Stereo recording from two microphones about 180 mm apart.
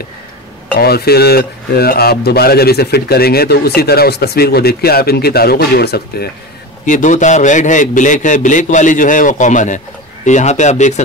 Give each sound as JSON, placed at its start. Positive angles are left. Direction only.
{"t": 0.7, "sound": "speech", "side_deg": 60}
{"t": 6.9, "sound": "a man's voice", "side_deg": 45}